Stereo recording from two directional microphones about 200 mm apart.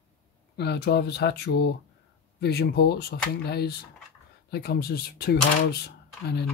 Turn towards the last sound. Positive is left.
turn(degrees=55)  # may be behind; listen again after turning